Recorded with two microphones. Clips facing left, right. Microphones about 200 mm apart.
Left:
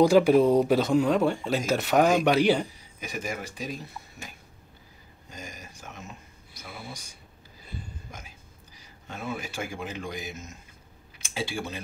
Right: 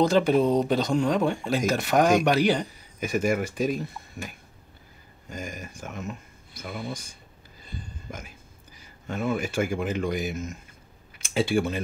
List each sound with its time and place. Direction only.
0.0 s speech: 10° left (ahead or behind)
3.0 s speech: 50° right (ahead or behind)
5.3 s speech: 50° right (ahead or behind)
9.1 s speech: 55° right (ahead or behind)